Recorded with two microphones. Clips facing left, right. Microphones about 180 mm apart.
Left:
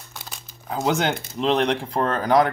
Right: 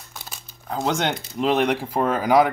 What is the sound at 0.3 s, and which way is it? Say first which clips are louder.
Speech: even; 5° left (ahead or behind).